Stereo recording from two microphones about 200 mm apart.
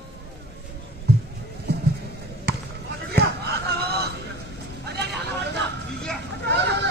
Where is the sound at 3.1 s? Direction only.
55° right (ahead or behind).